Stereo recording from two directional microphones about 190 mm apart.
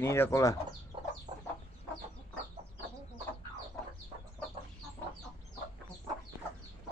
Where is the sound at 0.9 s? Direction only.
25° right (ahead or behind).